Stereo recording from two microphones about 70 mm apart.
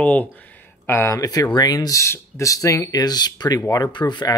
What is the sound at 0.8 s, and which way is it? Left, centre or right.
Speech, left.